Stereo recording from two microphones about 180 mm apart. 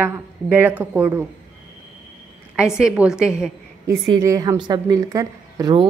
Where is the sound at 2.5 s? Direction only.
5° right (ahead or behind).